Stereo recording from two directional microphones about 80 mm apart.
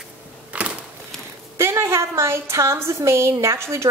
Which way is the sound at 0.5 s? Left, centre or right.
Centre.